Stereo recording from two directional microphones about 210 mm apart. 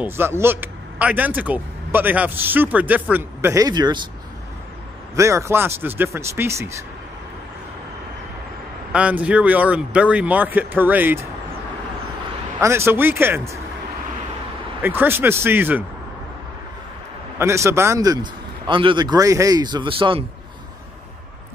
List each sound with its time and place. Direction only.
0.0 s speech: 10° right (ahead or behind)
5.1 s speech: 15° right (ahead or behind)
8.9 s speech: 5° right (ahead or behind)
12.5 s speech: 10° right (ahead or behind)
14.8 s speech: 10° right (ahead or behind)
17.4 s a man's voice: 15° right (ahead or behind)